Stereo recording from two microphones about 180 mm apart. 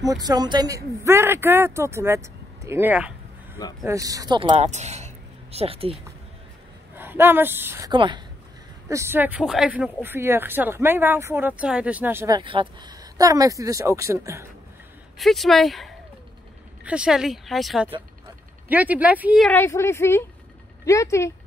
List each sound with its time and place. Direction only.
0.0 s speech: 20° right (ahead or behind)
3.8 s speech: 20° right (ahead or behind)
7.0 s speech: 10° right (ahead or behind)
7.9 s speech: 25° right (ahead or behind)
8.8 s speech: 15° right (ahead or behind)
12.4 s speech: 25° right (ahead or behind)
15.1 s speech: centre (ahead or behind)
19.4 s a woman's voice: 10° left (ahead or behind)